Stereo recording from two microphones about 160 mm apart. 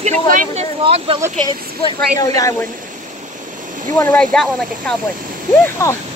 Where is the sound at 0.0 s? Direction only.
50° right (ahead or behind).